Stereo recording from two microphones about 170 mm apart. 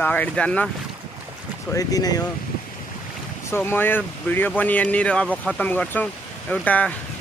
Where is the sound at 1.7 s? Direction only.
20° left (ahead or behind).